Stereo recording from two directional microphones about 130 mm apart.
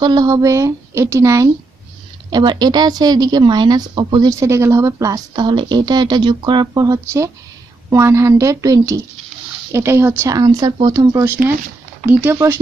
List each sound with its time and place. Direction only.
0.0 s speech: 30° right (ahead or behind)
2.3 s speech: 35° right (ahead or behind)
12.1 s speech: 15° right (ahead or behind)